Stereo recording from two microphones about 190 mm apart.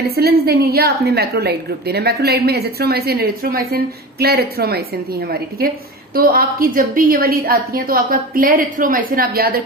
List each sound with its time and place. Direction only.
0.1 s a woman's voice: 55° right (ahead or behind)